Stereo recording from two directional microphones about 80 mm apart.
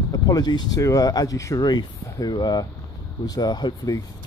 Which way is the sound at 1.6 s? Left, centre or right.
Left.